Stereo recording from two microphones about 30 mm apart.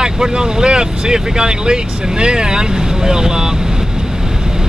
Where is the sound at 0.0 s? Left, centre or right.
Right.